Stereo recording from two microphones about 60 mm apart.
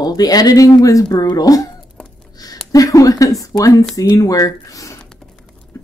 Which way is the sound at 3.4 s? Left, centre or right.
Left.